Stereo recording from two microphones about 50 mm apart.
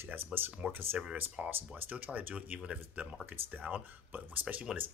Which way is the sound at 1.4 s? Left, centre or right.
Centre.